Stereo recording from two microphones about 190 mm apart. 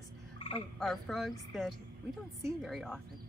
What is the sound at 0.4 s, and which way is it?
Frog, 30° left (ahead or behind).